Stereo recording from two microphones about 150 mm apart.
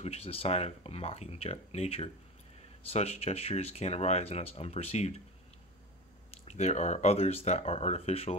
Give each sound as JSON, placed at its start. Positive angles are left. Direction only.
{"t": 0.0, "sound": "speech", "side_deg": 45}
{"t": 6.4, "sound": "speech", "side_deg": 50}